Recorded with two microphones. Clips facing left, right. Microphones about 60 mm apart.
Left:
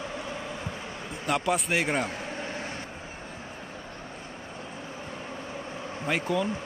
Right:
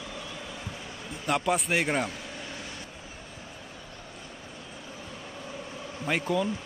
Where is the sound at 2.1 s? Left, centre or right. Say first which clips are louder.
Left 4 dB; left.